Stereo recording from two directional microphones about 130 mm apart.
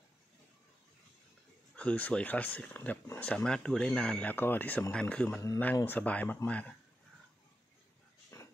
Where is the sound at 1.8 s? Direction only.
10° left (ahead or behind).